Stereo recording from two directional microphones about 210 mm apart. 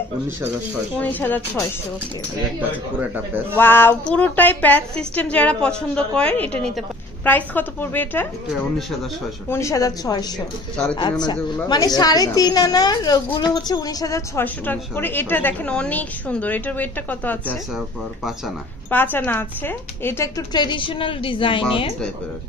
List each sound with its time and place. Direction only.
0.9 s a woman's voice: 10° left (ahead or behind)
3.5 s a woman's voice: 10° left (ahead or behind)
9.5 s a woman's voice: 15° left (ahead or behind)
18.9 s speech: 10° left (ahead or behind); by 21.9 s 25° left (ahead or behind)